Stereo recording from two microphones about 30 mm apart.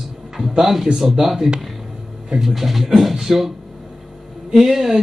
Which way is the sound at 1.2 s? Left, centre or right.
Centre.